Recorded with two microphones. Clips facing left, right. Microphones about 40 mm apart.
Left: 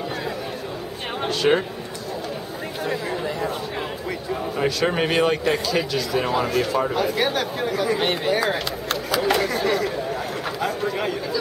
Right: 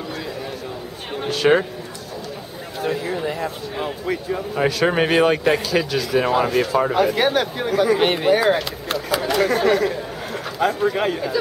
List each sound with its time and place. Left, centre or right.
1.3 s speech: centre
2.9 s speech: centre
6.6 s speech: centre
6.9 s speech: right